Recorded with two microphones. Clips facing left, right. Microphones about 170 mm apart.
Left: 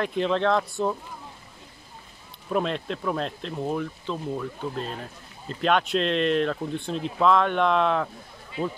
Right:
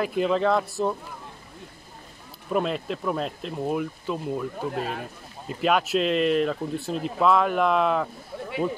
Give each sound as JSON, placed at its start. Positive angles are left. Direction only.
{"t": 0.0, "sound": "speech", "side_deg": -5}
{"t": 2.5, "sound": "speech", "side_deg": -5}
{"t": 4.7, "sound": "speech", "side_deg": -65}
{"t": 5.5, "sound": "speech", "side_deg": -5}